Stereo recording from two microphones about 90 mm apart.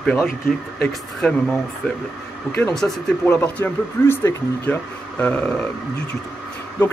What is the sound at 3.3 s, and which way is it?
Speech, 20° left (ahead or behind).